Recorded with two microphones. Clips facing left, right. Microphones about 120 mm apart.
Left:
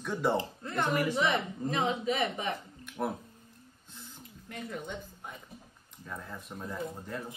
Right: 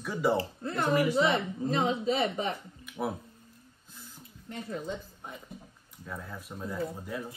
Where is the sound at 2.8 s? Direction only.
5° right (ahead or behind).